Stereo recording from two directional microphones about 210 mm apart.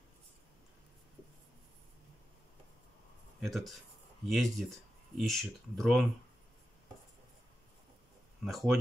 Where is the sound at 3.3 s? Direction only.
Centre (ahead or behind).